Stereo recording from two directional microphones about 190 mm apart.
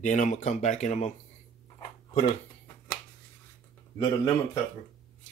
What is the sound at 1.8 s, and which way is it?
Dog, 25° left (ahead or behind).